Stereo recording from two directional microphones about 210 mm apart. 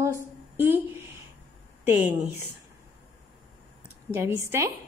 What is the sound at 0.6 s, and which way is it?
Speech, 10° right (ahead or behind).